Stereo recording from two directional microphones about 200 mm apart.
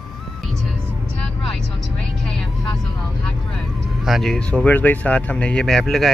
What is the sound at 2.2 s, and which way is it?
Vehicle, 5° left (ahead or behind).